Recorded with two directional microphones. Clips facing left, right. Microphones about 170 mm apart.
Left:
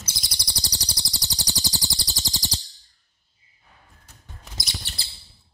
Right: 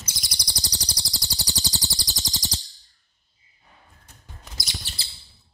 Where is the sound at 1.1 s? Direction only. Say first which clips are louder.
Left 1 dB; 20° left (ahead or behind).